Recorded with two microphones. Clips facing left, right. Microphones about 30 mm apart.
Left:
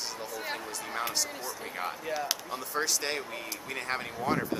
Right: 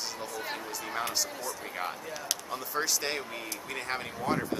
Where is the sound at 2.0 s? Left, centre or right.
Centre.